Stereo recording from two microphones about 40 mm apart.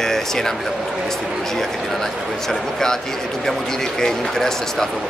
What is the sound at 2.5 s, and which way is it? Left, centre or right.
Speech, centre.